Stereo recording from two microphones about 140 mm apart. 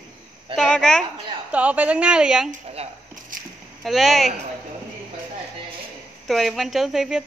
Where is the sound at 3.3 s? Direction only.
75° right (ahead or behind).